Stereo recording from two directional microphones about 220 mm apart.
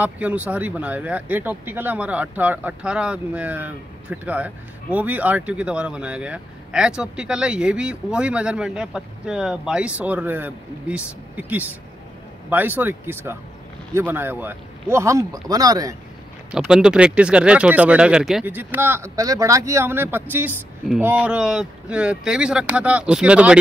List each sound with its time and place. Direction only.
0.0 s speech: 5° right (ahead or behind)
16.5 s speech: 5° right (ahead or behind)